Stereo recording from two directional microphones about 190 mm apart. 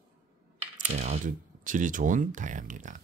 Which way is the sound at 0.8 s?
35° right (ahead or behind).